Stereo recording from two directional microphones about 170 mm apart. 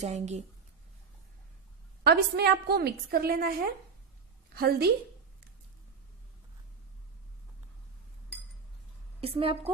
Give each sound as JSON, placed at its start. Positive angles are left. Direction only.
{"t": 0.0, "sound": "a woman's voice", "side_deg": -40}
{"t": 2.0, "sound": "a woman's voice", "side_deg": -70}
{"t": 9.2, "sound": "a woman's voice", "side_deg": -35}